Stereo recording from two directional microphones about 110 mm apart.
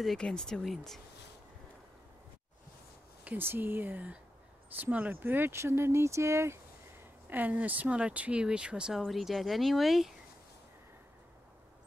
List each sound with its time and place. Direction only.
0.0 s speech: 5° left (ahead or behind)
3.3 s speech: 20° right (ahead or behind); by 10.1 s centre (ahead or behind)